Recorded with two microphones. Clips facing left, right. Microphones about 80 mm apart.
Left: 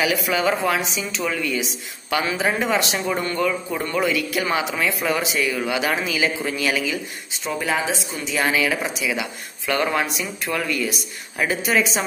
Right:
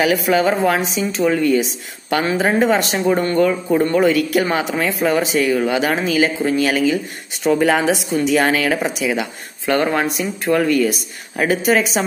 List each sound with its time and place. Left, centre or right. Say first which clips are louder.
0.0 s a woman's voice: right 5 dB; right
7.4 s a woman's voice: right 9 dB; right